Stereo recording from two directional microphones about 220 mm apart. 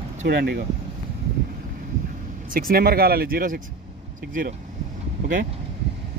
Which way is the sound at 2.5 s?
40° right (ahead or behind).